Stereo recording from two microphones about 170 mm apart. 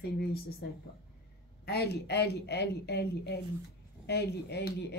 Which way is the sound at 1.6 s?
70° left (ahead or behind).